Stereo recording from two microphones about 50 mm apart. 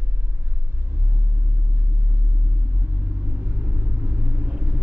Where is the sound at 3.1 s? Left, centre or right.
Right.